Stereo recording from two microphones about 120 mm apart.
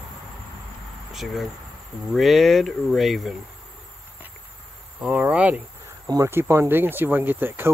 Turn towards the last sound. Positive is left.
turn(degrees=-20)  # may be behind; listen again after turning